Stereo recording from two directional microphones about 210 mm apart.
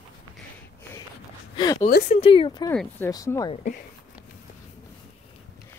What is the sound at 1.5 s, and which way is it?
Speech, 20° left (ahead or behind).